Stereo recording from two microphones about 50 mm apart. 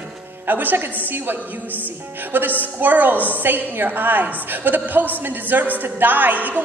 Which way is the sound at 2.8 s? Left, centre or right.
Right.